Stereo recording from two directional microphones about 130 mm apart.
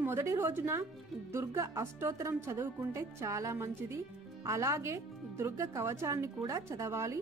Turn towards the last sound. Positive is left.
turn(degrees=-20)  # may be behind; listen again after turning